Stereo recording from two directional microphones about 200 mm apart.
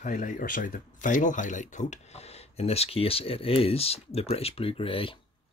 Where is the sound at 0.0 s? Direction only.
40° left (ahead or behind).